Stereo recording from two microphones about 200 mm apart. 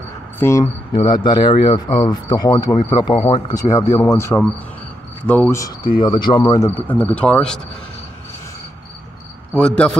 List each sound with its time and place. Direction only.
0.4 s speech: 15° left (ahead or behind)
5.9 s speech: 20° left (ahead or behind); by 7.6 s 5° left (ahead or behind)
9.5 s a man's voice: 5° left (ahead or behind)